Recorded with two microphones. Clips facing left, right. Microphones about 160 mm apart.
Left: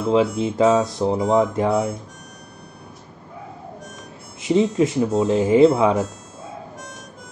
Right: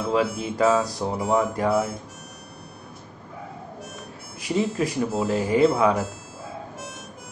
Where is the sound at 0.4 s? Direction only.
20° left (ahead or behind).